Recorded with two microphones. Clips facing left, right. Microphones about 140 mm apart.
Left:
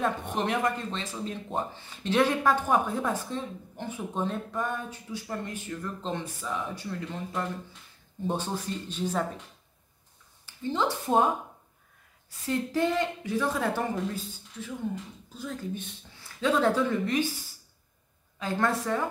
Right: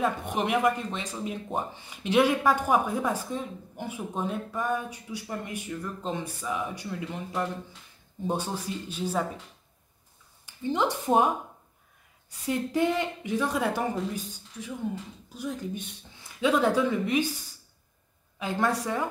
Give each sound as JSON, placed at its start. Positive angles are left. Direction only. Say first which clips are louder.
{"t": 0.0, "sound": "speech", "louder": "right 1 dB", "side_deg": -10}
{"t": 10.4, "sound": "speech", "louder": "right 2 dB", "side_deg": -15}
{"t": 12.4, "sound": "speech", "louder": "right 1 dB", "side_deg": -15}
{"t": 18.4, "sound": "speech", "louder": "even", "side_deg": -15}